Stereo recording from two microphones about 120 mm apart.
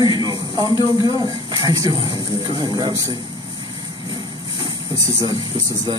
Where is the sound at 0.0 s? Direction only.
35° right (ahead or behind).